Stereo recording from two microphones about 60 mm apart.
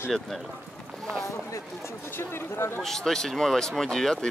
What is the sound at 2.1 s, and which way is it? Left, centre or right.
Speech, left.